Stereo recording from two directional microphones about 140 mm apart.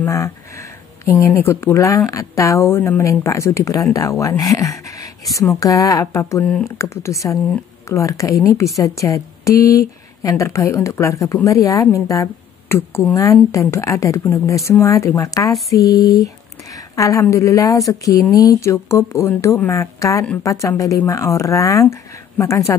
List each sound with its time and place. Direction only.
0.0 s a sound: 20° left (ahead or behind)
1.2 s a woman's voice: 15° left (ahead or behind)
6.4 s speech: 5° left (ahead or behind)
6.8 s a woman's voice: 20° left (ahead or behind)